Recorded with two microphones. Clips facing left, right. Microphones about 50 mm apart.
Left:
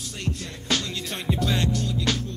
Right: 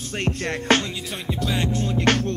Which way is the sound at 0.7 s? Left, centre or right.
Right.